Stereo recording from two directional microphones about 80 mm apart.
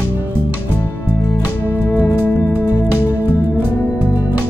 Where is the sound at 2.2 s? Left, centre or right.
Left.